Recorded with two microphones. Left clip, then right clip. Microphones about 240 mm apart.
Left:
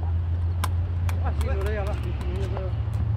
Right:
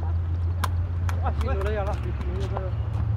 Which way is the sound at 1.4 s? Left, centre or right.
Right.